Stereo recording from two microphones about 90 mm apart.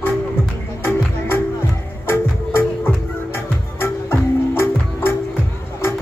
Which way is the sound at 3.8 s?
30° left (ahead or behind).